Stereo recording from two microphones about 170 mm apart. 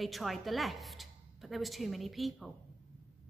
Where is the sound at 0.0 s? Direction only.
Centre (ahead or behind).